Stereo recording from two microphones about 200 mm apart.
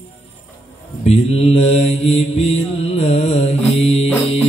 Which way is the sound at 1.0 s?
30° left (ahead or behind).